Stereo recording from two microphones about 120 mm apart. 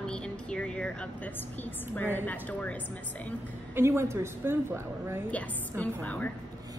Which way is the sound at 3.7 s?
20° right (ahead or behind).